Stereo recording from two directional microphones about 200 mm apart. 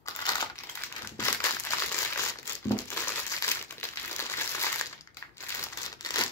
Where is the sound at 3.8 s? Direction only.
10° left (ahead or behind).